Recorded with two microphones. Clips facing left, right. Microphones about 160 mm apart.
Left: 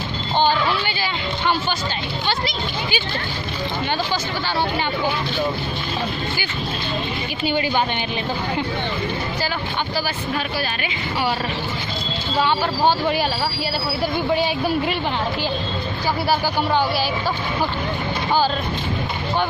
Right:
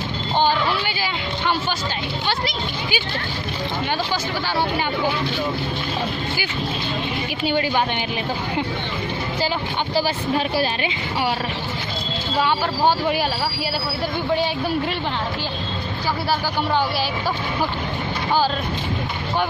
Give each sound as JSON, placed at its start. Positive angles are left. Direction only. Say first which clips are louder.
{"t": 0.5, "sound": "a sound", "louder": "left 1 dB", "side_deg": -5}
{"t": 2.2, "sound": "speech", "louder": "left 1 dB", "side_deg": -5}
{"t": 7.4, "sound": "speech", "louder": "even", "side_deg": 0}
{"t": 9.9, "sound": "speech", "louder": "right 7 dB", "side_deg": -25}
{"t": 12.4, "sound": "speech", "louder": "left 1 dB", "side_deg": -5}
{"t": 14.3, "sound": "speech", "louder": "even", "side_deg": 10}